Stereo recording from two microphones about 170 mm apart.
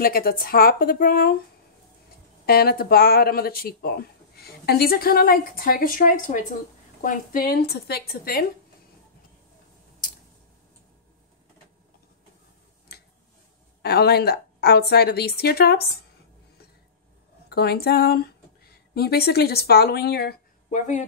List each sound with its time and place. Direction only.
0.0 s speech: 60° left (ahead or behind)
2.4 s speech: 65° left (ahead or behind)
13.8 s a woman's voice: 70° left (ahead or behind)
17.5 s speech: 70° left (ahead or behind)
20.7 s speech: 45° left (ahead or behind)